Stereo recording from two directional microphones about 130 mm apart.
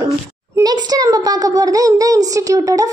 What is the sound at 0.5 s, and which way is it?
A child's voice, 30° right (ahead or behind).